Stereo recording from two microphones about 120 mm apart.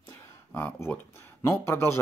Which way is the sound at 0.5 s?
20° left (ahead or behind).